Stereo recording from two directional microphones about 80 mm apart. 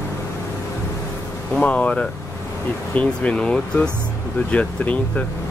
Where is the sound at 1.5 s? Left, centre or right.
Centre.